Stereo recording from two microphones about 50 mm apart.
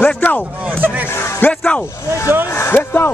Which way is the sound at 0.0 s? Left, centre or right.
Left.